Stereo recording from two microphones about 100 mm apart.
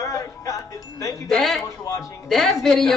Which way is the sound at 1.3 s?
5° left (ahead or behind).